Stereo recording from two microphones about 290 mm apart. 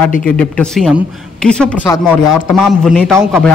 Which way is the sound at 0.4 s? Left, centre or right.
Centre.